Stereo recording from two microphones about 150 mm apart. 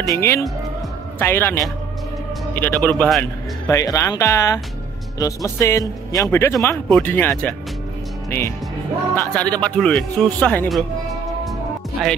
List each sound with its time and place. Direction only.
0.0 s a man's voice: 20° left (ahead or behind)
3.7 s speech: 20° left (ahead or behind)
12.0 s speech: centre (ahead or behind)